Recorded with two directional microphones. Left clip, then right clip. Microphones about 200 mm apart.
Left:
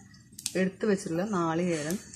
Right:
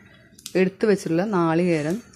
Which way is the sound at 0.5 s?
35° right (ahead or behind).